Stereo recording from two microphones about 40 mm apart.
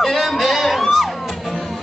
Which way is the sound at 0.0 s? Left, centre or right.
Centre.